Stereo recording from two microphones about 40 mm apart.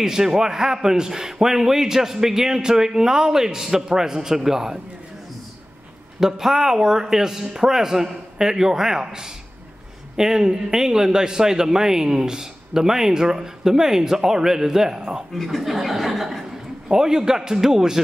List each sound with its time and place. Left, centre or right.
0.0 s a man's voice: centre
6.1 s a man's voice: centre
15.3 s speech: centre
16.9 s a man's voice: centre